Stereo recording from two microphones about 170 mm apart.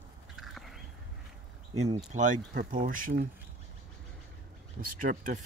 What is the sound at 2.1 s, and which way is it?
Speech, 50° right (ahead or behind).